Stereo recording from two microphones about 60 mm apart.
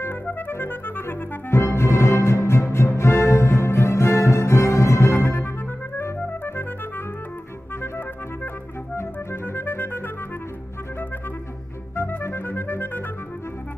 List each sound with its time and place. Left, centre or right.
0.5 s clarinet: left
1.5 s music: left
5.1 s music: left
5.9 s clarinet: left
8.9 s clarinet: left
11.9 s clarinet: left